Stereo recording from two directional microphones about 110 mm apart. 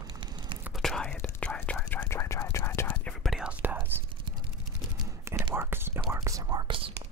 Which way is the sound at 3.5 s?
15° right (ahead or behind).